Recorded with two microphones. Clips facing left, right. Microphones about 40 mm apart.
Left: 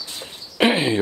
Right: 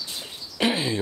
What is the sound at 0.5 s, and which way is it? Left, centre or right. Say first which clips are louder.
Speech: left 6 dB; left.